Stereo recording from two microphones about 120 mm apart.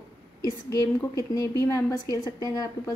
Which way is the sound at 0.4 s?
30° left (ahead or behind).